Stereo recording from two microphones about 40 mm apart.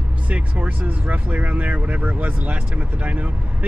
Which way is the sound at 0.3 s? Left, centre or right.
Right.